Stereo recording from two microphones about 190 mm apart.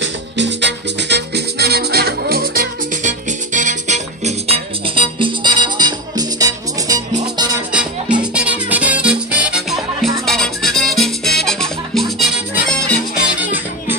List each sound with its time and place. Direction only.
0.0 s music: 70° right (ahead or behind); by 7.0 s 20° right (ahead or behind)
7.7 s music: 5° right (ahead or behind)